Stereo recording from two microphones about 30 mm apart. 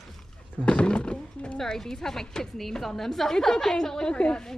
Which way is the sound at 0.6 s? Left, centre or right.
Left.